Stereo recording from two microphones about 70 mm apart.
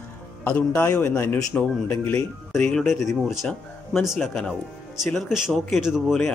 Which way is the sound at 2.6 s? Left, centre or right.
Centre.